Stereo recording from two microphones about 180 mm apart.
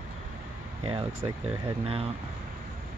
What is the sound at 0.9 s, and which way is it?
Speech, 30° right (ahead or behind).